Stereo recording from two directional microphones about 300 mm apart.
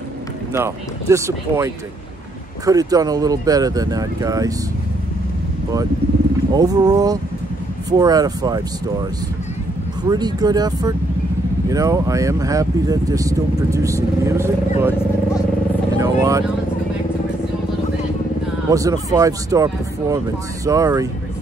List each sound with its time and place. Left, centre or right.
0.5 s speech: centre
6.5 s speech: centre
10.0 s speech: centre
16.0 s vehicle: centre
18.7 s speech: centre